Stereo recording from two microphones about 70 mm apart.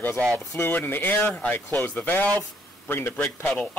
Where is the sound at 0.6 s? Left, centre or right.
Left.